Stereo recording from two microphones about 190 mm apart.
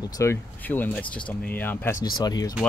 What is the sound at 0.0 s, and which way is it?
Speech, 15° left (ahead or behind).